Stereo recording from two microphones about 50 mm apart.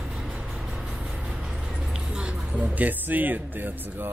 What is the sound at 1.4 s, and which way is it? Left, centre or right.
Music, centre.